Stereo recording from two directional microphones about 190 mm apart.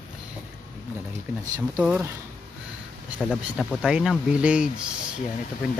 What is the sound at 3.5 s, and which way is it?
Speech, centre (ahead or behind).